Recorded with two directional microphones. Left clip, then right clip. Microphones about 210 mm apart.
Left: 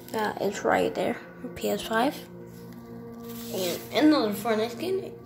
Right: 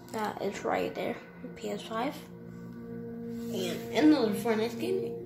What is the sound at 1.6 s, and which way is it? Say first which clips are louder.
Speech: left 8 dB; 20° left (ahead or behind).